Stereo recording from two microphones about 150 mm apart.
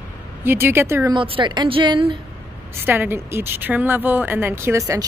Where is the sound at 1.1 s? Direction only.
35° right (ahead or behind).